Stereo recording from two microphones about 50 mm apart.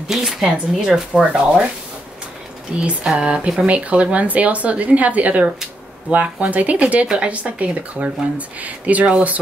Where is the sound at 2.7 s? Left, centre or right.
Centre.